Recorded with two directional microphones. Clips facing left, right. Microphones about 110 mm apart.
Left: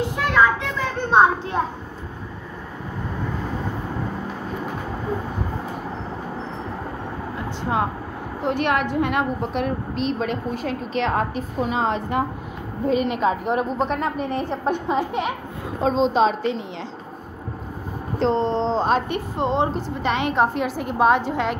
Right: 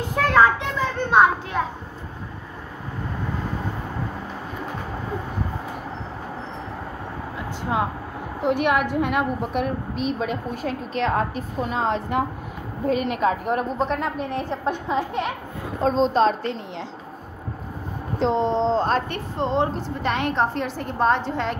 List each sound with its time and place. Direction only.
1.1 s a child's voice: 30° left (ahead or behind)
8.4 s a woman's voice: 5° right (ahead or behind)
18.2 s speech: 10° right (ahead or behind)
18.8 s a woman's voice: 10° left (ahead or behind)